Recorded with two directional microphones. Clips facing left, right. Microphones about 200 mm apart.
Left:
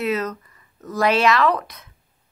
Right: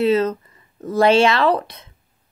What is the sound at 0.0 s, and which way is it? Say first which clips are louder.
Speech: right 7 dB; 30° right (ahead or behind).